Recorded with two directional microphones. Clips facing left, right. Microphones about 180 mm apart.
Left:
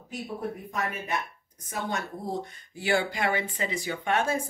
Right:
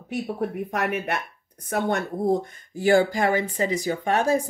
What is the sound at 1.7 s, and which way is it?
Speech, 60° right (ahead or behind).